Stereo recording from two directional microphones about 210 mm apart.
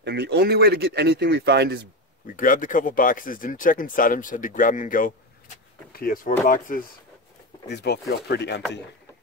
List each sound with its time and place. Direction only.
0.0 s speech: 50° right (ahead or behind)
2.2 s speech: 40° left (ahead or behind)
7.6 s speech: 50° left (ahead or behind)